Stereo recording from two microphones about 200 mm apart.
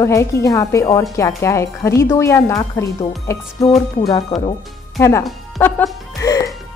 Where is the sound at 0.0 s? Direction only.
15° left (ahead or behind).